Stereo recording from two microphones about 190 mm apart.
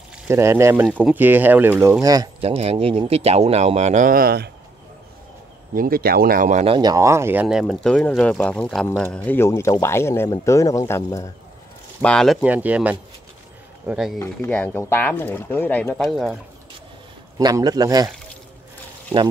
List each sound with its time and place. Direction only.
0.3 s speech: 15° right (ahead or behind)
2.4 s speech: 35° right (ahead or behind); by 4.5 s 55° right (ahead or behind)
5.8 s speech: 50° right (ahead or behind); by 11.2 s 15° left (ahead or behind)
12.0 s speech: 5° left (ahead or behind)
14.2 s speech: 10° left (ahead or behind)
17.4 s a man's voice: 20° right (ahead or behind)